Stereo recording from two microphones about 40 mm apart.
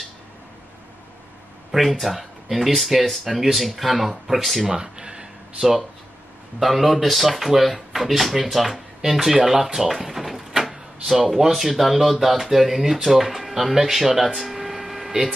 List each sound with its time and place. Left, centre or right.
1.7 s speech: centre
4.6 s speech: centre
5.6 s speech: centre
9.5 s door: centre
11.3 s speech: centre